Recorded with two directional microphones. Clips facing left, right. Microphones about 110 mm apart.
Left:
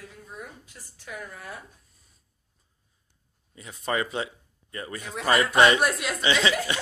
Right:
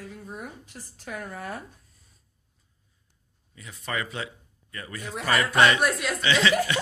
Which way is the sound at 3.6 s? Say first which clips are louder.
Left 4 dB; 30° left (ahead or behind).